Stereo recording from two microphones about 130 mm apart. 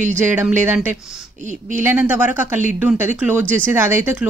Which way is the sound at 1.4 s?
70° right (ahead or behind).